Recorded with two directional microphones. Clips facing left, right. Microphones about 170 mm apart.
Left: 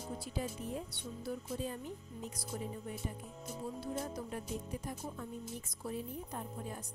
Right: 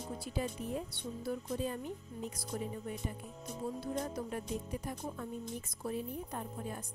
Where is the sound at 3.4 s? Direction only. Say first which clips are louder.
Right 2 dB; 5° left (ahead or behind).